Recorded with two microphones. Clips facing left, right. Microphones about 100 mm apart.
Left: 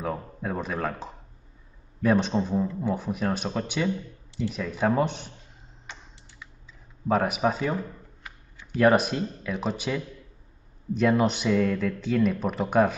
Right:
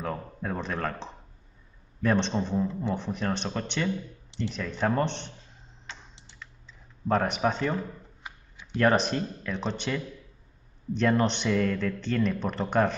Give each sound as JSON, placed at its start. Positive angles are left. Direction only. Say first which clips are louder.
{"t": 0.0, "sound": "speech", "louder": "left 2 dB", "side_deg": 5}
{"t": 5.9, "sound": "computer keyboard", "louder": "even", "side_deg": 15}
{"t": 7.1, "sound": "speech", "louder": "left 2 dB", "side_deg": 5}
{"t": 8.2, "sound": "typing", "louder": "right 2 dB", "side_deg": -20}
{"t": 8.7, "sound": "speech", "louder": "left 3 dB", "side_deg": 5}